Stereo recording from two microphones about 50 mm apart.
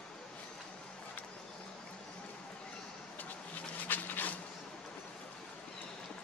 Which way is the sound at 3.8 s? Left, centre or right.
Left.